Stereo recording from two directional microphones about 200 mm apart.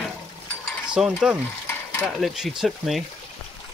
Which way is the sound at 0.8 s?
5° right (ahead or behind).